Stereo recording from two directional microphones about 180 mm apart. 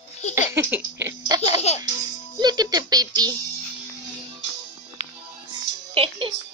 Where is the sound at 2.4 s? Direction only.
20° right (ahead or behind).